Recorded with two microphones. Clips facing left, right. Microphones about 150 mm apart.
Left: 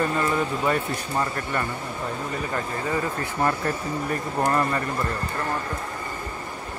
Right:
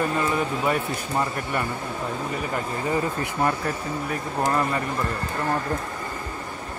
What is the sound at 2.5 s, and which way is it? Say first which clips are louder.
Speech: right 2 dB; 20° right (ahead or behind).